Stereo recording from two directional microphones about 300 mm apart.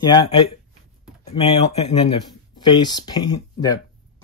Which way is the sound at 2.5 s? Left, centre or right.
Centre.